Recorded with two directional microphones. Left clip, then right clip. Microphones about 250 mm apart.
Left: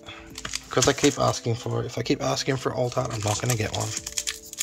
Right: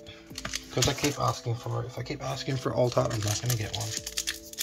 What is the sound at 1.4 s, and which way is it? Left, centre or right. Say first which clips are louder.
Speech: left 6 dB; left.